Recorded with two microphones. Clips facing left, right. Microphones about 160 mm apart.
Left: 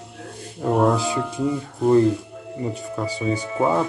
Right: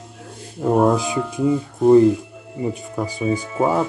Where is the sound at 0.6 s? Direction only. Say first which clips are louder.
Right 2 dB; 15° right (ahead or behind).